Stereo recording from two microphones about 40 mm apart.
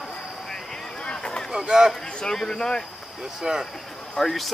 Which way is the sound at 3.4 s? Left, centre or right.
Centre.